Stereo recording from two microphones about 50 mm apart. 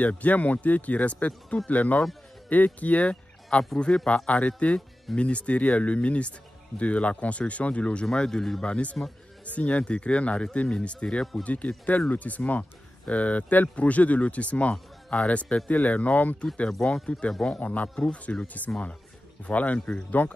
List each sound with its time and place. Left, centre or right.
0.0 s speech: left
8.1 s speech: centre
8.6 s speech: left
16.8 s speech: centre
17.6 s speech: left
19.4 s speech: left